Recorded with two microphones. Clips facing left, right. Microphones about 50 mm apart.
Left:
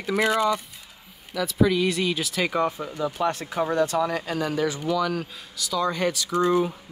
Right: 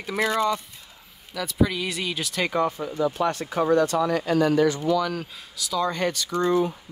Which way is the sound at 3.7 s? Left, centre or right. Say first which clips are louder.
Right 4 dB; left.